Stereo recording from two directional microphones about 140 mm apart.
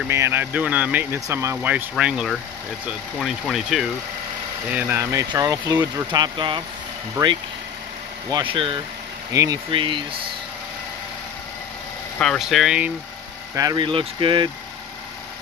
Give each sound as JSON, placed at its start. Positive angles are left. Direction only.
{"t": 0.1, "sound": "speech", "side_deg": -15}
{"t": 4.7, "sound": "speech", "side_deg": -15}
{"t": 5.4, "sound": "speech", "side_deg": -25}
{"t": 7.2, "sound": "speech", "side_deg": -20}
{"t": 8.3, "sound": "speech", "side_deg": -35}
{"t": 9.3, "sound": "speech", "side_deg": -25}
{"t": 9.7, "sound": "speech", "side_deg": -35}
{"t": 12.2, "sound": "speech", "side_deg": 0}
{"t": 13.6, "sound": "speech", "side_deg": -30}